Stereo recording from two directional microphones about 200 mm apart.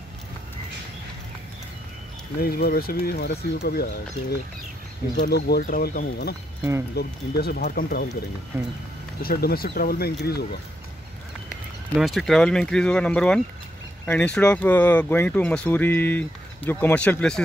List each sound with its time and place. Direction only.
2.4 s speech: 50° left (ahead or behind)
5.1 s speech: 45° left (ahead or behind)
8.5 s speech: 10° right (ahead or behind)
9.2 s speech: 50° left (ahead or behind)
12.0 s speech: centre (ahead or behind)